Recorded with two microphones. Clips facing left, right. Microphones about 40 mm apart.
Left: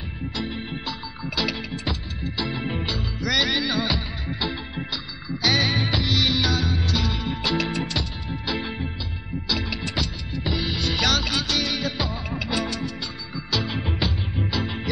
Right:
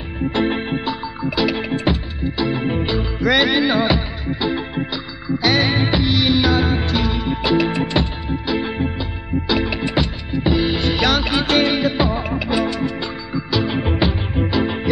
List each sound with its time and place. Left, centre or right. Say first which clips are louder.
0.3 s music: right 11 dB; right; by 1.6 s centre
1.6 s music: right 10 dB; right
2.2 s music: right 8 dB; centre
3.2 s music: right 7 dB; right
4.3 s music: right 9 dB; centre
6.6 s music: right 6 dB; right
8.3 s music: right 7 dB; centre
11.4 s music: right 9 dB; right
12.4 s music: right 4 dB; centre